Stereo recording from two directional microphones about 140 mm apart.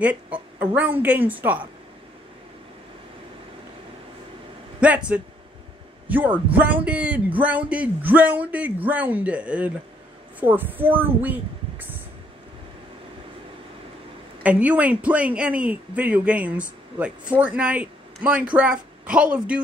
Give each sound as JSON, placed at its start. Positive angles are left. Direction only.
{"t": 0.0, "sound": "speech", "side_deg": -10}
{"t": 4.7, "sound": "speech", "side_deg": -10}
{"t": 14.4, "sound": "a woman's voice", "side_deg": -10}